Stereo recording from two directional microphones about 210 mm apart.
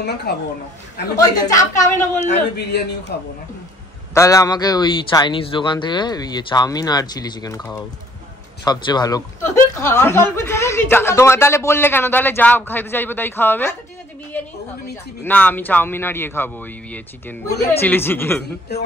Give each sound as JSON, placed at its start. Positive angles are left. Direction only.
{"t": 0.0, "sound": "speech", "side_deg": 50}
{"t": 1.1, "sound": "speech", "side_deg": 15}
{"t": 3.1, "sound": "speech", "side_deg": 50}
{"t": 4.1, "sound": "speech", "side_deg": 15}
{"t": 15.2, "sound": "speech", "side_deg": 10}